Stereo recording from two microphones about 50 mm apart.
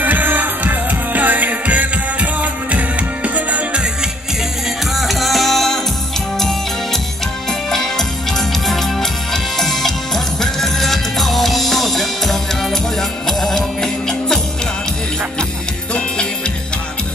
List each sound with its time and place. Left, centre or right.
0.0 s music: right
4.9 s music: centre
7.7 s music: centre